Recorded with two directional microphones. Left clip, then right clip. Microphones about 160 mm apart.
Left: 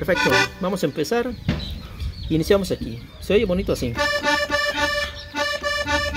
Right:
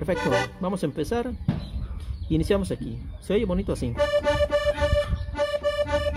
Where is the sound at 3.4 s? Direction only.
5° left (ahead or behind).